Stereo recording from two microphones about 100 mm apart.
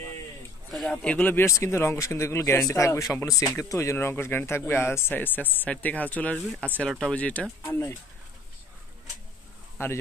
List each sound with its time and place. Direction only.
0.8 s speech: 15° left (ahead or behind)
1.4 s speech: 30° left (ahead or behind)
9.8 s speech: 25° left (ahead or behind)